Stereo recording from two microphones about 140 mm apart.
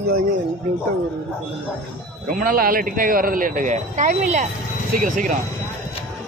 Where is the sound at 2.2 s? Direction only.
80° right; by 5.4 s 65° right (ahead or behind).